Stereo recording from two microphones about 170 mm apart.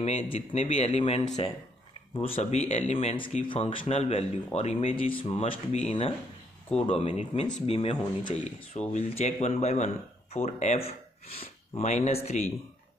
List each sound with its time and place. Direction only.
0.0 s speech: 35° left (ahead or behind)
8.7 s speech: 40° left (ahead or behind)